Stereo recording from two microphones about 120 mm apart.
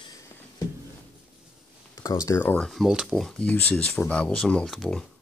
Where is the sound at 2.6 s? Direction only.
Centre (ahead or behind).